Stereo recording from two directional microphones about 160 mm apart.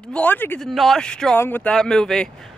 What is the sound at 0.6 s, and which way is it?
Speech, centre (ahead or behind).